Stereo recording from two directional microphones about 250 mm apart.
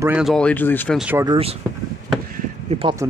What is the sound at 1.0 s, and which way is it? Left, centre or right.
Speech, centre.